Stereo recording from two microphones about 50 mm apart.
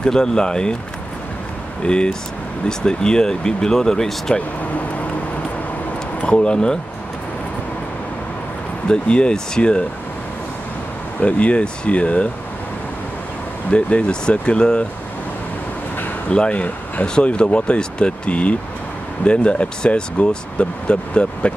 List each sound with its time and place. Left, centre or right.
0.0 s speech: centre
1.9 s speech: centre
6.2 s speech: left
8.8 s speech: centre
11.1 s speech: left
13.7 s speech: left
16.3 s speech: left